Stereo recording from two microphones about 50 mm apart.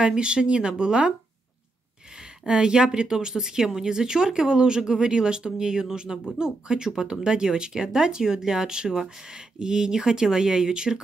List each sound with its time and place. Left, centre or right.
0.0 s speech: centre
2.4 s speech: centre